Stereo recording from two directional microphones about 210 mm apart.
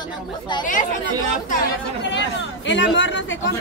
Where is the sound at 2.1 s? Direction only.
60° left (ahead or behind).